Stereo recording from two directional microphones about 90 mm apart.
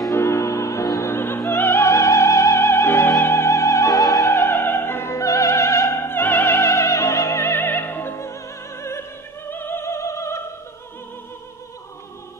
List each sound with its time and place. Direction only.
0.1 s music: 30° left (ahead or behind)
4.3 s music: 25° left (ahead or behind)
9.5 s opera: 25° left (ahead or behind)